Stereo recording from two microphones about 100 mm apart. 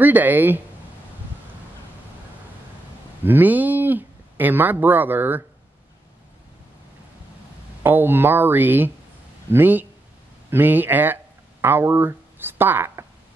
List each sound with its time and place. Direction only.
0.0 s speech: 20° right (ahead or behind)
3.3 s speech: 20° right (ahead or behind)
7.8 s speech: 20° right (ahead or behind)